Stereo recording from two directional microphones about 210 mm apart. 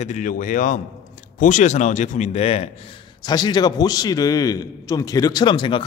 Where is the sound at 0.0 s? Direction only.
35° left (ahead or behind).